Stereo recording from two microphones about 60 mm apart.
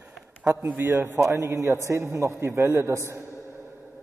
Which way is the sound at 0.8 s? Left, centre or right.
Right.